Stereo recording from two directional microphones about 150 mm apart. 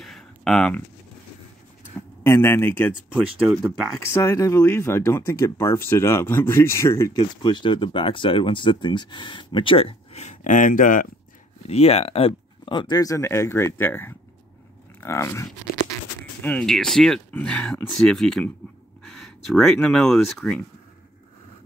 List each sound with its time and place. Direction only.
0.0 s a sound: centre (ahead or behind)
2.0 s speech: 15° left (ahead or behind)
4.1 s speech: 20° left (ahead or behind)
7.2 s speech: 30° left (ahead or behind); by 11.1 s 60° left (ahead or behind)
11.6 s speech: 40° left (ahead or behind); by 15.4 s 20° left (ahead or behind)
16.4 s speech: 5° left (ahead or behind)